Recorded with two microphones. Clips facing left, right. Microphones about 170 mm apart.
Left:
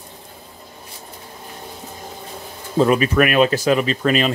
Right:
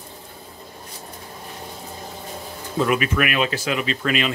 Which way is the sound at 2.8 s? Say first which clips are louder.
Left 5 dB; 35° left (ahead or behind).